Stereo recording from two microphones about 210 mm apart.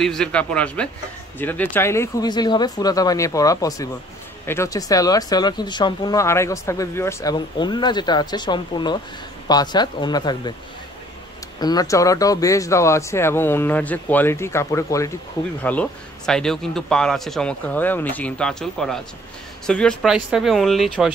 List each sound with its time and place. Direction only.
0.0 s a man's voice: 5° left (ahead or behind); by 10.5 s 20° left (ahead or behind)
11.6 s a man's voice: 15° left (ahead or behind); by 21.1 s centre (ahead or behind)